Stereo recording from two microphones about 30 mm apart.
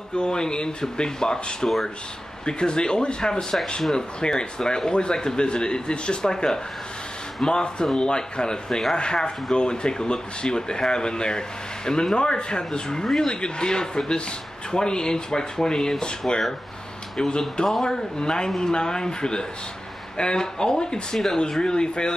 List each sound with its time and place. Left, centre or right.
0.1 s speech: left
13.0 s speech: centre
13.3 s speech: left